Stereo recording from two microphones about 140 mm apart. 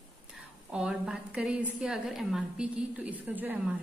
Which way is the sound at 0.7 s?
5° right (ahead or behind).